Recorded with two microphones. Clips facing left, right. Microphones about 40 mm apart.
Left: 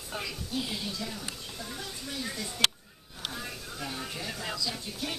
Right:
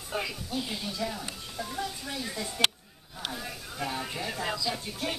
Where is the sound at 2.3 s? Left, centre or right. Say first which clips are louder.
Right 1 dB; centre.